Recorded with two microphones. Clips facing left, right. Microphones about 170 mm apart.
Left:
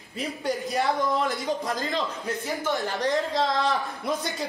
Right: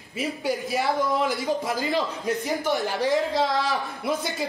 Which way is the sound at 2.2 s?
15° right (ahead or behind).